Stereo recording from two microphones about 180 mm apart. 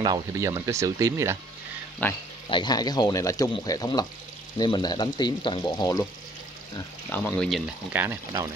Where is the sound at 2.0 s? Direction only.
10° left (ahead or behind).